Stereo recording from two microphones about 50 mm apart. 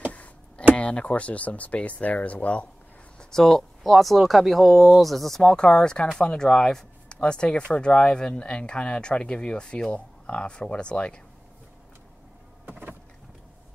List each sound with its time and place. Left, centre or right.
0.1 s tick: left
0.7 s speech: left
3.2 s speech: centre
12.6 s power windows: right